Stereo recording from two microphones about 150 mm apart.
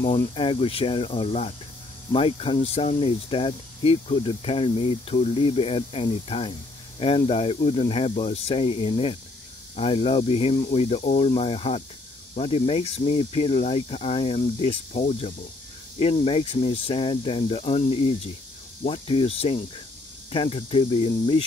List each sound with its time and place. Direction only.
0.3 s speech: 35° left (ahead or behind)